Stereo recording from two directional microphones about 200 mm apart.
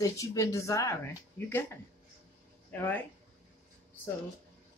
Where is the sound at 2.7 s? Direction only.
10° left (ahead or behind).